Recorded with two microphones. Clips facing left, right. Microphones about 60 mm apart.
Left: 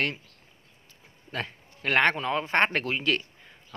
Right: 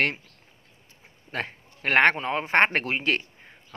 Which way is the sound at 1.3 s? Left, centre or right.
Right.